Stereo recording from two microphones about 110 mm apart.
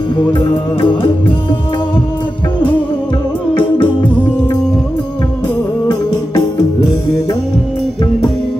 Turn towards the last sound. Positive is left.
turn(degrees=40)  # may be behind; listen again after turning